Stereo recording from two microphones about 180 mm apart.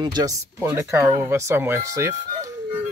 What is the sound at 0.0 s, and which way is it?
Speech, 25° right (ahead or behind).